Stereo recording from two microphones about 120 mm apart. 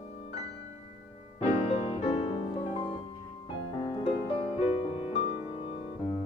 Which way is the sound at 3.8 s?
50° left (ahead or behind).